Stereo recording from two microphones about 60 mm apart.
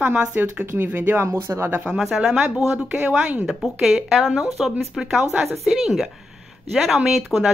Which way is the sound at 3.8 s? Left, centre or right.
Centre.